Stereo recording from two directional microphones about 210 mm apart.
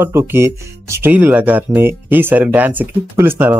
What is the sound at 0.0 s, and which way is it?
Speech, 10° right (ahead or behind).